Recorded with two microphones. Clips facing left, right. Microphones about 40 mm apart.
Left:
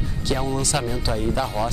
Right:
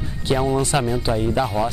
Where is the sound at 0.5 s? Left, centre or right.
Right.